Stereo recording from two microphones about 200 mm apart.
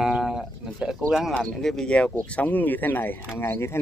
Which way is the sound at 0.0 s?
5° right (ahead or behind).